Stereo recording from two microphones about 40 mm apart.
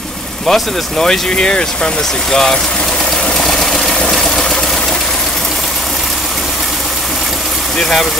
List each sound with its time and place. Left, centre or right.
0.5 s speech: centre
1.3 s speech: left
3.3 s vehicle: centre
4.0 s engine: centre